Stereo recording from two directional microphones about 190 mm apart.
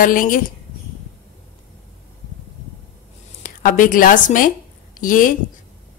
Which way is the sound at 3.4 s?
45° left (ahead or behind).